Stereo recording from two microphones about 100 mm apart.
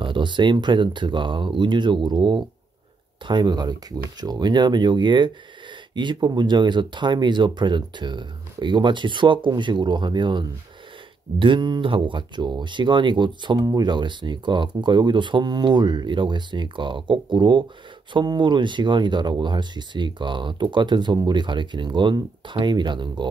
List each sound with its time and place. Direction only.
0.0 s speech: 55° right (ahead or behind)